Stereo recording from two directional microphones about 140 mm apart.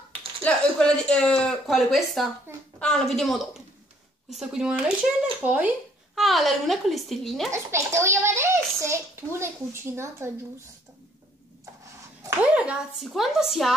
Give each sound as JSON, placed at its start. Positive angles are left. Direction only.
{"t": 0.4, "sound": "speech", "side_deg": 5}
{"t": 6.1, "sound": "speech", "side_deg": 0}
{"t": 7.5, "sound": "a child's voice", "side_deg": -20}
{"t": 12.5, "sound": "speech", "side_deg": -5}